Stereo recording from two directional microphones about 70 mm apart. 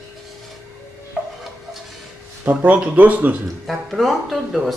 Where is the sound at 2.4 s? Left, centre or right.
Right.